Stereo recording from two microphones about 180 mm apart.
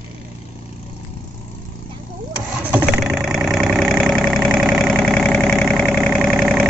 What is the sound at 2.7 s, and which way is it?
Engine, 5° right (ahead or behind).